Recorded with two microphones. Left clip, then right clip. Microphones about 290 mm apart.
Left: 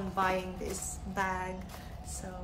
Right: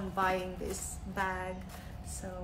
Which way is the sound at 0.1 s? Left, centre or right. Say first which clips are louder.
Left 1 dB; centre.